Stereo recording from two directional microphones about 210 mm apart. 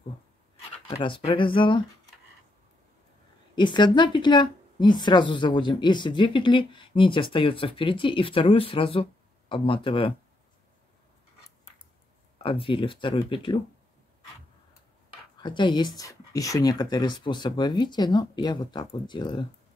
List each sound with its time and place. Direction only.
0.9 s speech: 20° left (ahead or behind)
3.5 s speech: 20° left (ahead or behind)
12.4 s speech: 25° left (ahead or behind)
15.3 s speech: 20° left (ahead or behind)